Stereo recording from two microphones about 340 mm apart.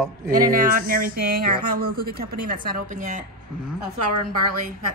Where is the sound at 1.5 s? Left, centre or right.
Right.